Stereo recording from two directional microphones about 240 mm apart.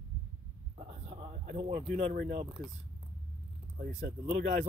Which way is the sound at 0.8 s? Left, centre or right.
Right.